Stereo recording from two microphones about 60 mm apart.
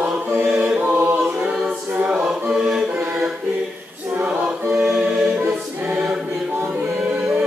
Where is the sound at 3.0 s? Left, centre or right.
Right.